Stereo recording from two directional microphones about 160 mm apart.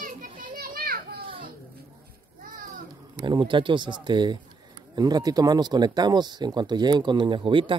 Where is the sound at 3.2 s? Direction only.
30° right (ahead or behind).